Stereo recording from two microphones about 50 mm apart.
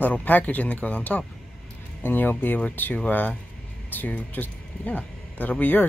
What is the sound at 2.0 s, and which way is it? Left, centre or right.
Speech, left.